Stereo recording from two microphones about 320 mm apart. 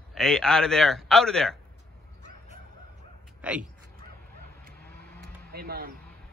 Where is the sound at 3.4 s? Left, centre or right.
Centre.